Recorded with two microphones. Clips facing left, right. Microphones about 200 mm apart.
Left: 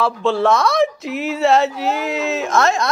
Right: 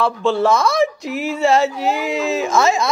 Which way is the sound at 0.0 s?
Centre (ahead or behind).